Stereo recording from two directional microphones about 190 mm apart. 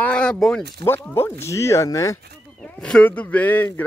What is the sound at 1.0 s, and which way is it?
Speech, 10° left (ahead or behind).